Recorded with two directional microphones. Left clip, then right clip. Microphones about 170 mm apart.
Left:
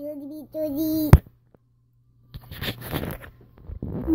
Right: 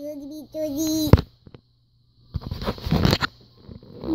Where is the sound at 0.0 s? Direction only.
5° right (ahead or behind).